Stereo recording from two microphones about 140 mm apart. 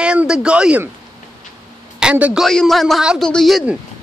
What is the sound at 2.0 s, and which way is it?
Speech, 10° right (ahead or behind).